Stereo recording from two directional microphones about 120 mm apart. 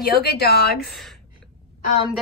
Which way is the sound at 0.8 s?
Centre (ahead or behind).